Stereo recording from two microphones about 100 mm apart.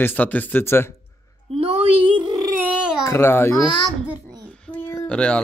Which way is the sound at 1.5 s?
70° right (ahead or behind).